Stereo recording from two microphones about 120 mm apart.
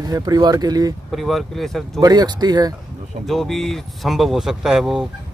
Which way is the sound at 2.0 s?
35° right (ahead or behind).